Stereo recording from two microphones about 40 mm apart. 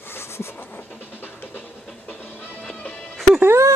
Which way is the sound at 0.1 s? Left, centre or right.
Left.